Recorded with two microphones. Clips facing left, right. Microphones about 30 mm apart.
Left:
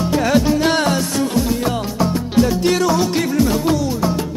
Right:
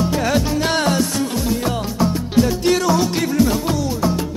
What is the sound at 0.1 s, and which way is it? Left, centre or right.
Music, centre.